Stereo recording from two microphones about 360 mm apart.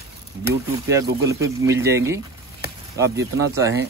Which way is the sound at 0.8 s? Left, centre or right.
Centre.